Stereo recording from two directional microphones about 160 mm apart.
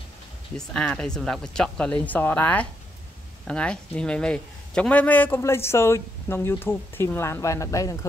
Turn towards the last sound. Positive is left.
turn(degrees=20)  # may be behind; listen again after turning